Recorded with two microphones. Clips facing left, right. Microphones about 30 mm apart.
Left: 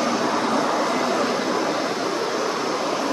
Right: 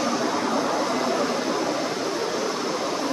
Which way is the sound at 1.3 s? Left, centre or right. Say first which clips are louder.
Left 2 dB; left.